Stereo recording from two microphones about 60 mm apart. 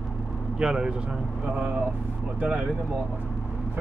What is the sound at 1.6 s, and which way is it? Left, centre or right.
Speech, right.